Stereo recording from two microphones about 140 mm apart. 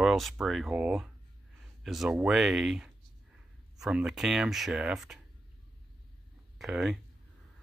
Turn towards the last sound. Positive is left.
turn(degrees=0)  # may be behind; listen again after turning